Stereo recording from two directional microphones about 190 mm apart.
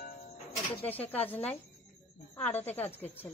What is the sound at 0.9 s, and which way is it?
Speech, 10° left (ahead or behind).